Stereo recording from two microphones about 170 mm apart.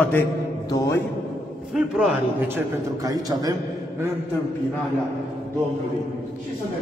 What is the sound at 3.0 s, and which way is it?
Speech, 20° right (ahead or behind).